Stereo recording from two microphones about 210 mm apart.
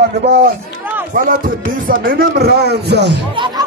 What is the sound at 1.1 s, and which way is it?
Speech, 40° right (ahead or behind).